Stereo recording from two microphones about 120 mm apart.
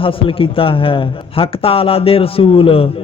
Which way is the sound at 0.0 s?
50° left (ahead or behind).